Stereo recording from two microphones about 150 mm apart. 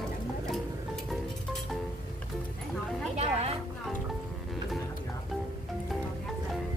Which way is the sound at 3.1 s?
45° right (ahead or behind).